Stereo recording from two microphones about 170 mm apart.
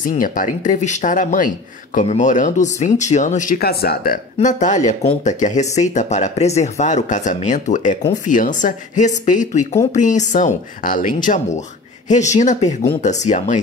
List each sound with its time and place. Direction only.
0.0 s speech: 50° left (ahead or behind)